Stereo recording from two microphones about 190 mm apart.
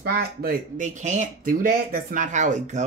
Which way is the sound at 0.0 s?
50° right (ahead or behind).